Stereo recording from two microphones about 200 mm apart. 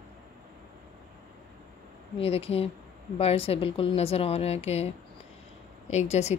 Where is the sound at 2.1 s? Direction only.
30° left (ahead or behind).